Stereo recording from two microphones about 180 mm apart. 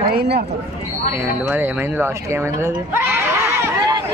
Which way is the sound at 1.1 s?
10° right (ahead or behind).